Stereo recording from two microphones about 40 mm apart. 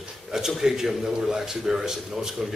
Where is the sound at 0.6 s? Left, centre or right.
Centre.